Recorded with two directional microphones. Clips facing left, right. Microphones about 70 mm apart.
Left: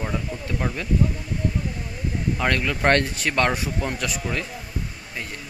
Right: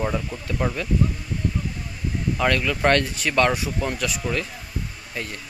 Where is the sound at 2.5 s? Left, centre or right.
Left.